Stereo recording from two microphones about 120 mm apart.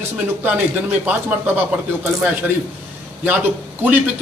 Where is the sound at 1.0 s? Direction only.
15° right (ahead or behind).